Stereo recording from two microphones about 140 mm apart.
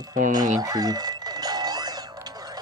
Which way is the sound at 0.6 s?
25° right (ahead or behind).